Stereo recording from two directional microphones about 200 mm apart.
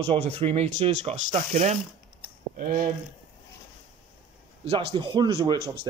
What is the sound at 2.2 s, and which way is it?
Computer keyboard, 45° right (ahead or behind).